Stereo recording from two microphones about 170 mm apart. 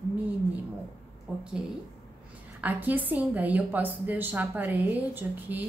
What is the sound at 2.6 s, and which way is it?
A woman's voice, 10° right (ahead or behind).